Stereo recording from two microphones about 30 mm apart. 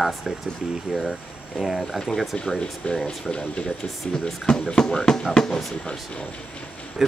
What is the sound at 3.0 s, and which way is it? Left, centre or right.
Speech, left.